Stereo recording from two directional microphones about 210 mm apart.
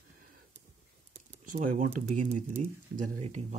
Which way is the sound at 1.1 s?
35° right (ahead or behind).